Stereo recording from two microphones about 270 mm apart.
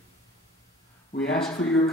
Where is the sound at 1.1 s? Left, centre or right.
Centre.